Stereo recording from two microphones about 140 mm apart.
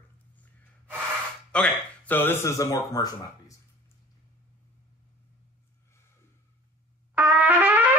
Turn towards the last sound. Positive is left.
turn(degrees=-10)  # may be behind; listen again after turning